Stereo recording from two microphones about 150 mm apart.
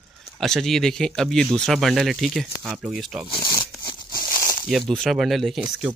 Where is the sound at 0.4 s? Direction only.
Centre (ahead or behind).